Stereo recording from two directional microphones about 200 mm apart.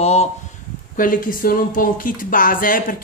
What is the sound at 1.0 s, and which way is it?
Speech, 45° left (ahead or behind).